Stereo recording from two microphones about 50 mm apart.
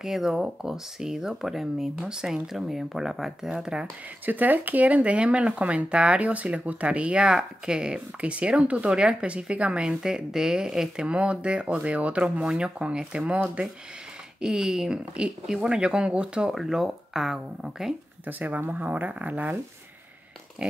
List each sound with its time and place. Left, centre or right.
0.0 s speech: centre
2.0 s speech: centre
4.3 s speech: right; by 11.1 s centre
11.1 s speech: right
12.4 s speech: centre
14.4 s speech: centre
16.5 s speech: centre
18.2 s speech: right